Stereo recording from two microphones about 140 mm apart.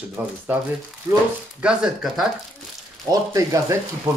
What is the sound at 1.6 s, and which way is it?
Speech, 5° right (ahead or behind).